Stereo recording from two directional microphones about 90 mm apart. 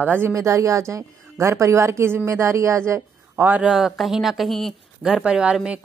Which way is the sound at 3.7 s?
5° right (ahead or behind).